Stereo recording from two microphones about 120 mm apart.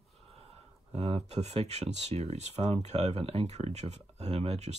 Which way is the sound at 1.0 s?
60° right (ahead or behind).